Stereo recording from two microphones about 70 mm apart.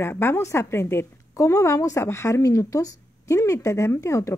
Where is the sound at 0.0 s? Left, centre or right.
Left.